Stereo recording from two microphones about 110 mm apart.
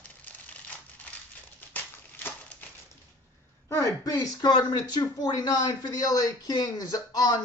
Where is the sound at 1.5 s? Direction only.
15° left (ahead or behind).